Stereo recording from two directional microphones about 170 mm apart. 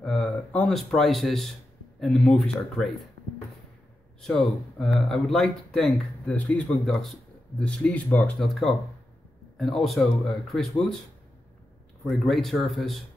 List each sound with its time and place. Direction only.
0.0 s speech: 5° left (ahead or behind)
4.2 s speech: 5° left (ahead or behind)
12.1 s speech: centre (ahead or behind)